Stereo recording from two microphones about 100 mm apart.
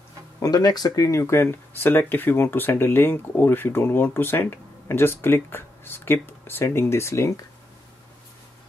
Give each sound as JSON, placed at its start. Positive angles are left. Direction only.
{"t": 0.4, "sound": "speech", "side_deg": 40}